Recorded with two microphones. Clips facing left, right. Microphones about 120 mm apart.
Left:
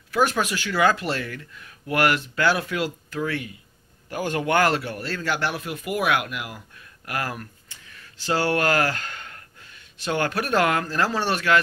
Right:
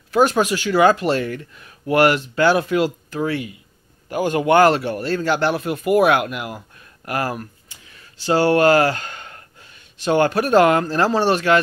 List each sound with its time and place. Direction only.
0.1 s speech: 25° right (ahead or behind)